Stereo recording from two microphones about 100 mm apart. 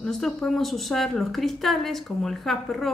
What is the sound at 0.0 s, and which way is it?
A woman's voice, 5° left (ahead or behind).